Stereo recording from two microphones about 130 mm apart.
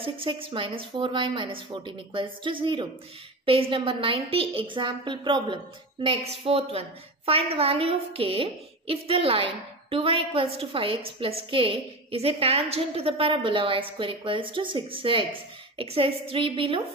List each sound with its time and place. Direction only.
0.0 s a woman's voice: 45° right (ahead or behind)